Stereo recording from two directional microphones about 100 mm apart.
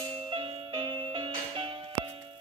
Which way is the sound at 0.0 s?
65° right (ahead or behind).